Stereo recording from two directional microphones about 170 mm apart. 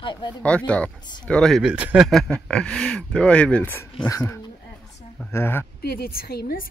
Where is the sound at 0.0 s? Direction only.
25° left (ahead or behind).